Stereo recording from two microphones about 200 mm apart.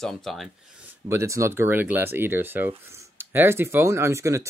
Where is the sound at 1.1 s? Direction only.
15° right (ahead or behind).